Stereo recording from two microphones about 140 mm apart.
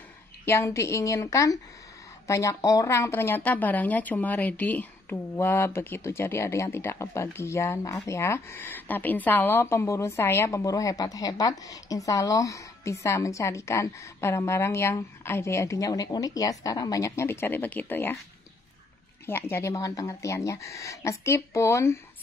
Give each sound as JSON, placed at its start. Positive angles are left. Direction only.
{"t": 0.5, "sound": "speech", "side_deg": 20}
{"t": 19.2, "sound": "speech", "side_deg": 15}